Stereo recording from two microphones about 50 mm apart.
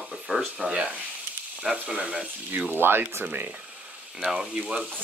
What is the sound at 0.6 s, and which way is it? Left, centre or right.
Speech, right.